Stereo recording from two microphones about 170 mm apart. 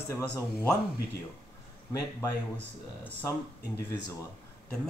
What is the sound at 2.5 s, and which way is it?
Speech, 10° left (ahead or behind).